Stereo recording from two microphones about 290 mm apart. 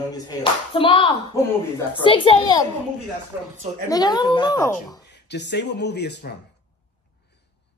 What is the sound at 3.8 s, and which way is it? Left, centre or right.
Speech, centre.